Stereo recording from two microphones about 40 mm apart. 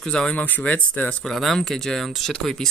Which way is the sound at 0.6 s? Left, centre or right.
Left.